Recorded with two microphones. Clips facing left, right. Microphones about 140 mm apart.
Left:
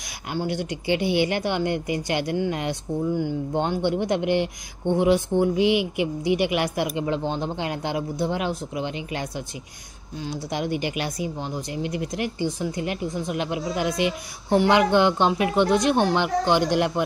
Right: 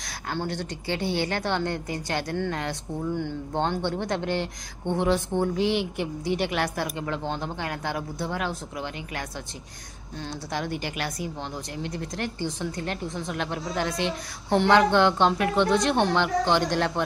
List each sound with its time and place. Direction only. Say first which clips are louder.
0.3 s a woman's voice: left 4 dB; 15° left (ahead or behind)